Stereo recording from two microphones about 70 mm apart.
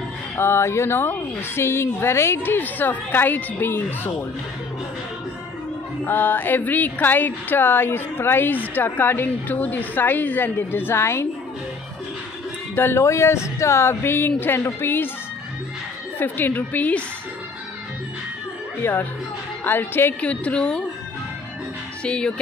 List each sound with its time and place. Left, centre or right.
0.4 s a woman's voice: left
6.0 s speech: left
12.7 s a woman's voice: left
16.2 s speech: left
18.8 s a woman's voice: left; by 20.8 s centre
22.0 s speech: centre